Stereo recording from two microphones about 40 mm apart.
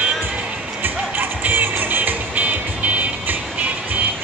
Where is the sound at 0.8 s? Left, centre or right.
Right.